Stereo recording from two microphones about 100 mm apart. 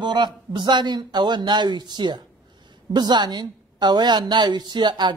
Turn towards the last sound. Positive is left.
turn(degrees=-45)  # may be behind; listen again after turning